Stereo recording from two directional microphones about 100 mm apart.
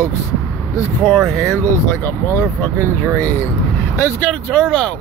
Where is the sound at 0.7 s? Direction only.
5° right (ahead or behind).